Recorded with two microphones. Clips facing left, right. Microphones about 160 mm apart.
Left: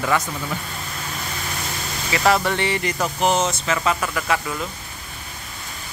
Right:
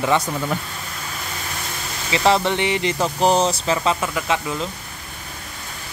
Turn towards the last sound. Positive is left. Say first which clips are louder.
# right 1 dB
turn(degrees=-20)  # may be behind; listen again after turning